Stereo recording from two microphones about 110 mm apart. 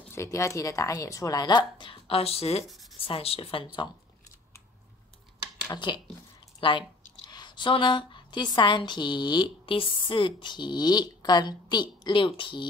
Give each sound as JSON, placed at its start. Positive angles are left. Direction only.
{"t": 0.1, "sound": "a woman's voice", "side_deg": 25}
{"t": 5.7, "sound": "a woman's voice", "side_deg": 45}